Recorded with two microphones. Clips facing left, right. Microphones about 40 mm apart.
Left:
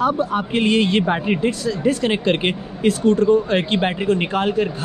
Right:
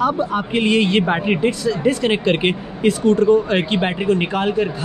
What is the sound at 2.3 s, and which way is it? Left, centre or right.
Speech, right.